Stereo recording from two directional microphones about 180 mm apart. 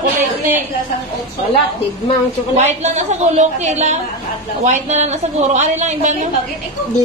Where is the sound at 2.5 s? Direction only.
40° right (ahead or behind).